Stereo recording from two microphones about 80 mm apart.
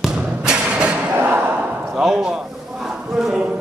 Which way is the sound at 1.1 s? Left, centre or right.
Right.